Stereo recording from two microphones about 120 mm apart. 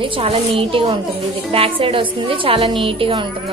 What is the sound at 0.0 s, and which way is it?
Speech, 50° right (ahead or behind).